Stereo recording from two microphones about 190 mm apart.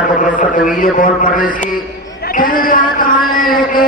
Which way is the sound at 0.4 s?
45° left (ahead or behind).